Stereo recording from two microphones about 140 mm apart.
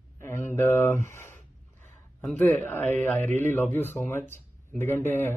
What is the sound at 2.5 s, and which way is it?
A man's voice, 10° left (ahead or behind).